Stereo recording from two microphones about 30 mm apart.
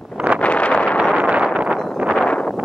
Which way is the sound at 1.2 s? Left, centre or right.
Right.